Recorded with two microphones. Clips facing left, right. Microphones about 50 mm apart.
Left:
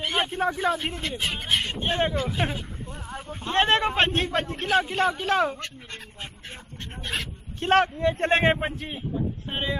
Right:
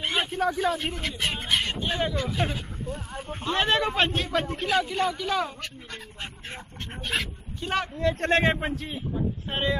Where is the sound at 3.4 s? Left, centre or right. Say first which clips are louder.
Left 2 dB; left.